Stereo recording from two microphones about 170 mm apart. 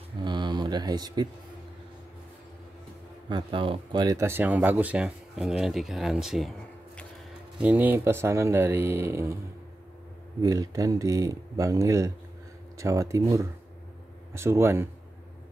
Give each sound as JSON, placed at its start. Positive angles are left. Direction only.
{"t": 0.2, "sound": "a sound", "side_deg": -25}
{"t": 3.3, "sound": "speech", "side_deg": -30}
{"t": 7.5, "sound": "speech", "side_deg": -10}
{"t": 10.4, "sound": "speech", "side_deg": -20}